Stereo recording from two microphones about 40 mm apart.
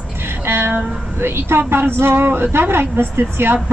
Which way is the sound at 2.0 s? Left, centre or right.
Right.